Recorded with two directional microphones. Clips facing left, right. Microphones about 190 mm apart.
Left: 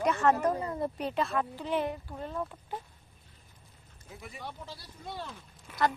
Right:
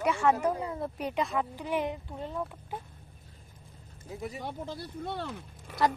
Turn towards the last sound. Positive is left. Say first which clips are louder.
# right 6 dB
turn(degrees=-60)  # may be behind; listen again after turning